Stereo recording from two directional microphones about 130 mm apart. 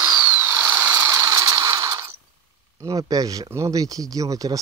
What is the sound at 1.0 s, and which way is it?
Mechanisms, 25° right (ahead or behind).